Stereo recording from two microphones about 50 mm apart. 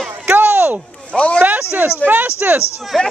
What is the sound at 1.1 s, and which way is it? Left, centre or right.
Speech, left.